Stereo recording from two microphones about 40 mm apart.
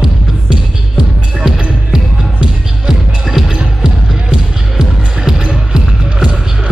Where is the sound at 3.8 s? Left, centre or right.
Centre.